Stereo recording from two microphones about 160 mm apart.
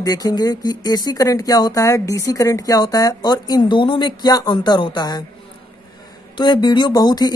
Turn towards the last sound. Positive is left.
turn(degrees=25)  # may be behind; listen again after turning